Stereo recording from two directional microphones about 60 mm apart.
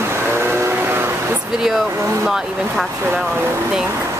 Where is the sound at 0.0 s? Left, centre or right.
Right.